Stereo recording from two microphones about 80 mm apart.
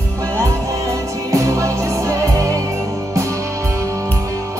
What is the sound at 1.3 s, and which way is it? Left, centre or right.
Music, right.